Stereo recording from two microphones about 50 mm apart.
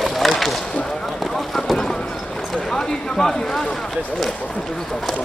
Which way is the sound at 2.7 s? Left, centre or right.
Centre.